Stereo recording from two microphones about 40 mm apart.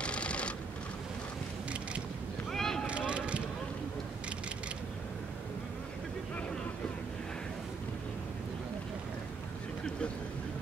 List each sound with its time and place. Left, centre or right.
0.0 s a sound: left
2.5 s boat: centre
3.1 s vehicle: right